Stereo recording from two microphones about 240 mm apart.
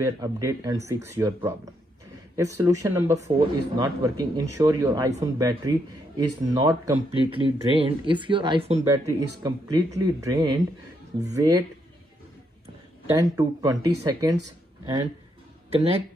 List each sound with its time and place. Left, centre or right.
0.0 s speech: centre
13.2 s speech: centre
15.7 s speech: right